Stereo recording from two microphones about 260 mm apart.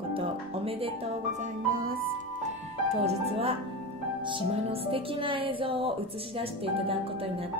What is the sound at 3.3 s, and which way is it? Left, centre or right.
Speech, right.